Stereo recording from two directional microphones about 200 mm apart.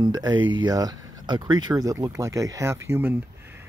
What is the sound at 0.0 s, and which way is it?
Speech, 20° right (ahead or behind).